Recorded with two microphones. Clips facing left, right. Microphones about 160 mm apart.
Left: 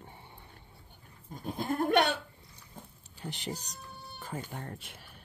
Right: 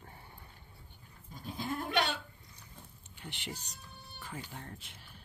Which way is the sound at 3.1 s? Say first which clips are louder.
Left 6 dB; 40° left (ahead or behind).